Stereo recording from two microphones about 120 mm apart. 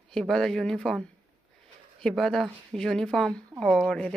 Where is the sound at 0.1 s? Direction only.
5° left (ahead or behind).